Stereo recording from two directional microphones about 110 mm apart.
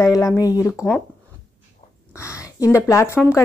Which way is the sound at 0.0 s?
30° left (ahead or behind).